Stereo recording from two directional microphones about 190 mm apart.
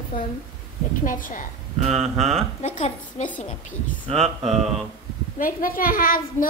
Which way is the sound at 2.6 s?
40° left (ahead or behind).